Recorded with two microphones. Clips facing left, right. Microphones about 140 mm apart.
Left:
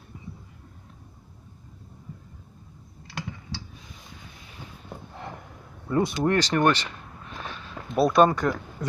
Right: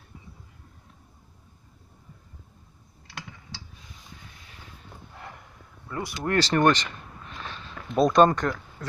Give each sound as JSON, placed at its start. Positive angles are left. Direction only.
{"t": 5.9, "sound": "speech", "side_deg": 30}
{"t": 6.4, "sound": "speech", "side_deg": 10}
{"t": 7.4, "sound": "a sound", "side_deg": 10}